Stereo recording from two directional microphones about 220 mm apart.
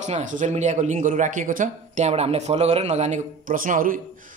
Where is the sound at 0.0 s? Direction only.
35° right (ahead or behind).